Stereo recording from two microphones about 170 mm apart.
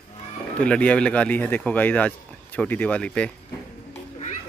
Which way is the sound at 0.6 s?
5° left (ahead or behind).